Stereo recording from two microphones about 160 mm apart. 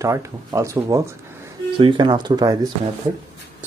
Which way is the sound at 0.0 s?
20° right (ahead or behind).